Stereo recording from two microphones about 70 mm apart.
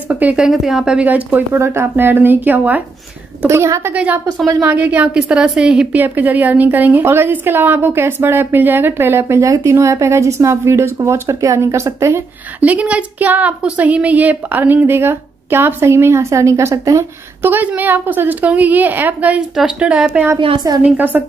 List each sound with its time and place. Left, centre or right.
0.1 s speech: centre
0.4 s a woman's voice: centre
1.0 s speech: right
1.5 s a woman's voice: right
3.4 s a woman's voice: right
3.9 s a woman's voice: centre
5.9 s a woman's voice: right
9.4 s a woman's voice: right
12.5 s speech: right
17.4 s speech: right
20.7 s a woman's voice: right
21.1 s speech: centre